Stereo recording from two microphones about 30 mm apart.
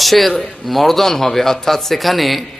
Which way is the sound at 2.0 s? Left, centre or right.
Centre.